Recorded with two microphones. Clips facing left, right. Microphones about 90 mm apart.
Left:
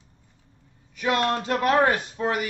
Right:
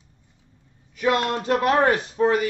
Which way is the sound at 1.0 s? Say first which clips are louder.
Right 2 dB; 35° right (ahead or behind).